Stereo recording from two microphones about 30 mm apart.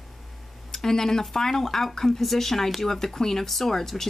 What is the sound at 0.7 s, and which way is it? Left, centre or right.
A woman's voice, centre.